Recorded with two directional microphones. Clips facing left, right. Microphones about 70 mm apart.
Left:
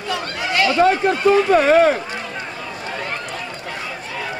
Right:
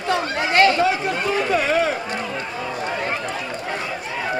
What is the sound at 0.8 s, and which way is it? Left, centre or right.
Speech, left.